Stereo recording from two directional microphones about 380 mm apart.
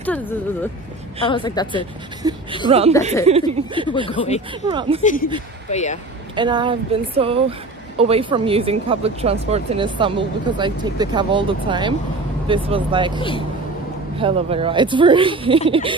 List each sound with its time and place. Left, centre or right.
0.0 s a woman's voice: centre
1.8 s speech: centre
5.0 s a woman's voice: left
6.3 s speech: centre